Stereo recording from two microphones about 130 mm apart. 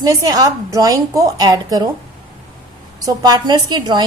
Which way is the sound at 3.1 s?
30° right (ahead or behind).